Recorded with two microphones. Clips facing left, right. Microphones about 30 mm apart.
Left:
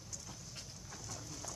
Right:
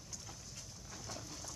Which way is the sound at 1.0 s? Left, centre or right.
Right.